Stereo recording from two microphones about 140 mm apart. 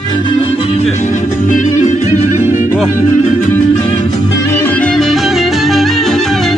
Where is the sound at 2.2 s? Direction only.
20° right (ahead or behind).